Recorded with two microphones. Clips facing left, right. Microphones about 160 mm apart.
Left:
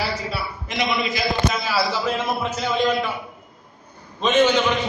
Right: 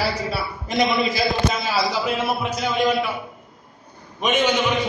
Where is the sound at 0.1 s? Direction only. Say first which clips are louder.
Right 2 dB; 35° right (ahead or behind).